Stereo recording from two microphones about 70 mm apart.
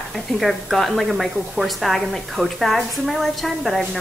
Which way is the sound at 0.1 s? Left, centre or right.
Centre.